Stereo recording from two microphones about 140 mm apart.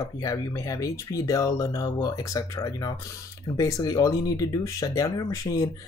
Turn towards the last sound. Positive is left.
turn(degrees=25)  # may be behind; listen again after turning